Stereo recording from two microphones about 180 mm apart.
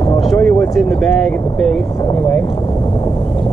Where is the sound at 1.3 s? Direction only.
5° left (ahead or behind).